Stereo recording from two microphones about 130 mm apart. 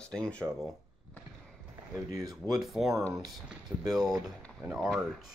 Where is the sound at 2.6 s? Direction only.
Centre (ahead or behind).